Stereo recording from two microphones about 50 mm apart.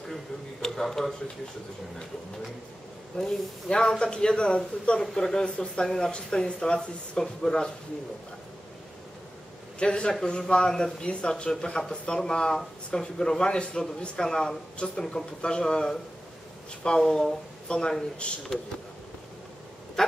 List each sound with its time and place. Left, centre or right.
0.1 s a sound: centre
3.1 s speech: centre
9.8 s a man's voice: centre
17.0 s a man's voice: centre
20.0 s speech: centre